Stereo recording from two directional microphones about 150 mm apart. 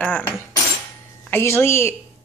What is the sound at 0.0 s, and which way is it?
Cutlery, 10° left (ahead or behind).